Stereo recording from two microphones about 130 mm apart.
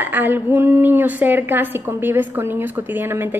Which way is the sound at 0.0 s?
15° right (ahead or behind).